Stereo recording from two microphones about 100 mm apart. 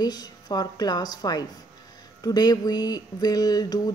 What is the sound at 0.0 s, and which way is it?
Speech, 40° left (ahead or behind).